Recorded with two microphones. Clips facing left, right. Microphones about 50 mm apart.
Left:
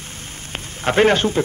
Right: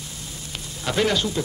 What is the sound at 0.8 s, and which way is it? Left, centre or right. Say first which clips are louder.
Speech: left 7 dB; left.